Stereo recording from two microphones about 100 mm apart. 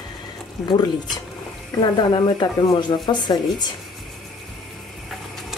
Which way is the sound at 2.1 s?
45° left (ahead or behind).